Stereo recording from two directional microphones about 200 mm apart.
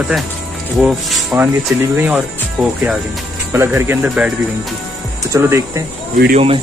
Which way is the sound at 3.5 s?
10° right (ahead or behind).